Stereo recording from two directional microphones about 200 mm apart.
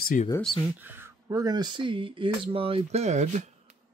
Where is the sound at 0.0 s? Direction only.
40° left (ahead or behind).